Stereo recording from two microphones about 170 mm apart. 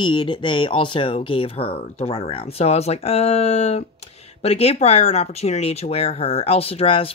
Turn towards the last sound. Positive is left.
turn(degrees=35)  # may be behind; listen again after turning